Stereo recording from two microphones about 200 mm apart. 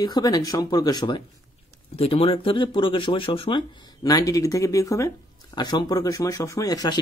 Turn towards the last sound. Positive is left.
turn(degrees=20)  # may be behind; listen again after turning